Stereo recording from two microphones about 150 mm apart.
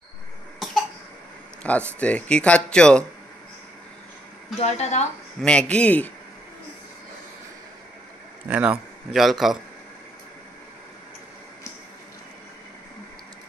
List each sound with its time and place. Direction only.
1.6 s speech: 10° left (ahead or behind)
4.6 s speech: 50° left (ahead or behind)
5.4 s speech: 5° left (ahead or behind)
8.5 s speech: 10° right (ahead or behind)